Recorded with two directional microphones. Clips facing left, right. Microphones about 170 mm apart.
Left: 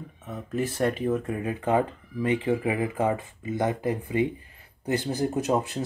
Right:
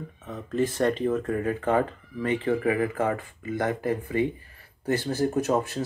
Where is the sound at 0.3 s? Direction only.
10° left (ahead or behind).